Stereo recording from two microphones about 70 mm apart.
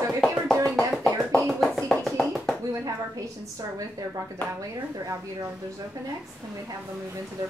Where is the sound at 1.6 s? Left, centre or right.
Centre.